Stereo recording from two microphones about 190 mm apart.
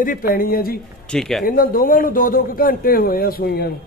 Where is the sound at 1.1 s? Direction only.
Centre (ahead or behind).